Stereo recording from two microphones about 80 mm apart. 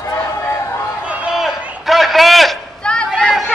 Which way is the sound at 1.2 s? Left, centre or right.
Centre.